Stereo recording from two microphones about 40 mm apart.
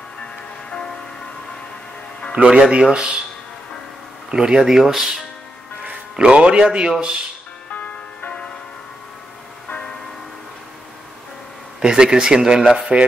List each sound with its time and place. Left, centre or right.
2.4 s speech: right
4.3 s speech: centre
11.8 s speech: centre